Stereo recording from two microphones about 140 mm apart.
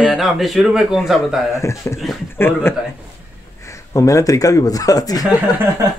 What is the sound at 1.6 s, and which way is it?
Speech, 20° left (ahead or behind).